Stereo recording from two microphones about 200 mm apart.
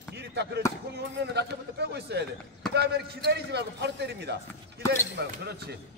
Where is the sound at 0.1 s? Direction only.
55° right (ahead or behind).